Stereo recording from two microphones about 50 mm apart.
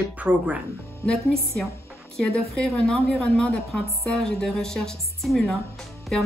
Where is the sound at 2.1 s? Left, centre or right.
Centre.